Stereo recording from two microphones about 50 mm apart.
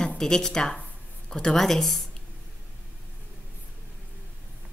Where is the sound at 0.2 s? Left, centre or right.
Centre.